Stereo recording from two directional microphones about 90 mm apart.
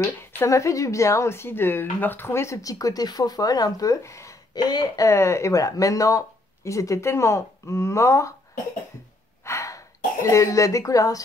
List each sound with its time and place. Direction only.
0.2 s speech: 25° left (ahead or behind)
4.6 s speech: 50° left (ahead or behind)
5.0 s speech: 30° left (ahead or behind)
9.4 s throat clearing: 30° left (ahead or behind)